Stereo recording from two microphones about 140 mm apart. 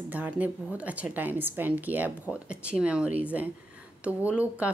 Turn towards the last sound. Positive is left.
turn(degrees=-10)  # may be behind; listen again after turning